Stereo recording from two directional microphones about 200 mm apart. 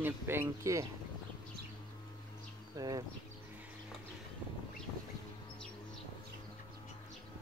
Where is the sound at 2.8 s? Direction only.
20° right (ahead or behind).